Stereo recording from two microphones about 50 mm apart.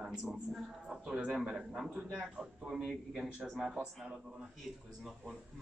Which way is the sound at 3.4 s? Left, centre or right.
Centre.